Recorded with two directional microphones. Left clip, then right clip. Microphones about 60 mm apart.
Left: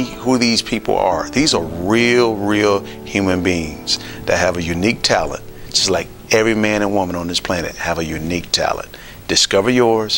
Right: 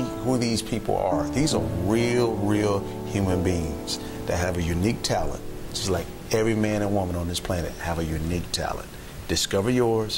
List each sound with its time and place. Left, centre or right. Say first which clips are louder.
0.0 s speech: left 9 dB; left